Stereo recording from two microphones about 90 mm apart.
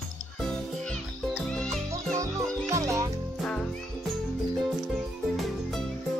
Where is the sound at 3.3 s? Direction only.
10° left (ahead or behind).